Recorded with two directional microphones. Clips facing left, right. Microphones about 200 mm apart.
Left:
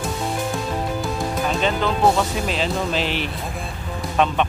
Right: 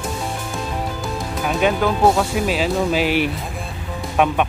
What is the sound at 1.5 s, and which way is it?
Speech, 10° right (ahead or behind).